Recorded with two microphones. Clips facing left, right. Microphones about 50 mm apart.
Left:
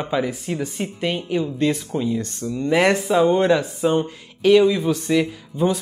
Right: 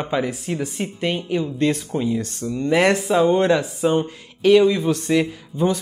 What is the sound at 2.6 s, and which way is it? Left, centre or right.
Speech, centre.